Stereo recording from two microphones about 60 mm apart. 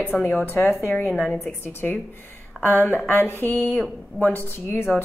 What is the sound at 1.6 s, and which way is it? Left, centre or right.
A woman's voice, left.